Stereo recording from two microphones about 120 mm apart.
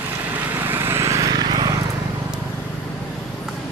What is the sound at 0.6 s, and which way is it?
Vehicle, 20° right (ahead or behind).